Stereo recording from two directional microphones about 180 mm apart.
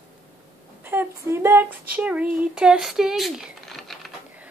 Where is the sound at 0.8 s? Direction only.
15° right (ahead or behind).